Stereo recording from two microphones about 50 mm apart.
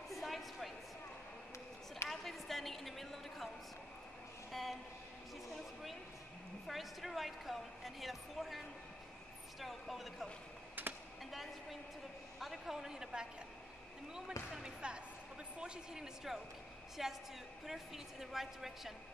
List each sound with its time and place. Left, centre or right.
0.1 s a sound: centre
2.0 s a sound: centre
4.5 s speech: centre
6.7 s a woman's voice: centre
10.8 s computer keyboard: right
11.2 s a woman's voice: centre
14.5 s a woman's voice: centre